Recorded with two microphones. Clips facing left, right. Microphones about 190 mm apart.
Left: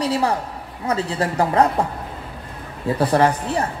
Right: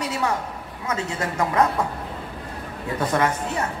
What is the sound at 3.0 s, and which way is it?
Speech, 35° left (ahead or behind).